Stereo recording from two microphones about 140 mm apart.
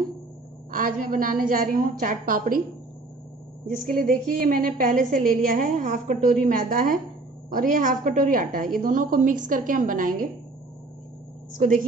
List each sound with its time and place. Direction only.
0.7 s a woman's voice: 75° right (ahead or behind)
3.7 s a woman's voice: 85° right
11.5 s a woman's voice: 80° right